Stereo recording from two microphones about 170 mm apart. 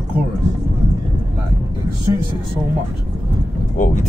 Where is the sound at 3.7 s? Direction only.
50° left (ahead or behind).